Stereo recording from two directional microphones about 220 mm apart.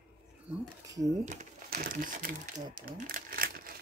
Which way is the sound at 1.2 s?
35° right (ahead or behind).